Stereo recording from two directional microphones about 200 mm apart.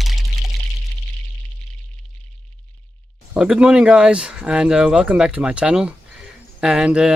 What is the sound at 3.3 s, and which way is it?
Speech, 5° right (ahead or behind).